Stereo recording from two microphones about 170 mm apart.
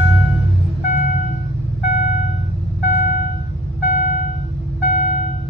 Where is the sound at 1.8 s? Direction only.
40° left (ahead or behind).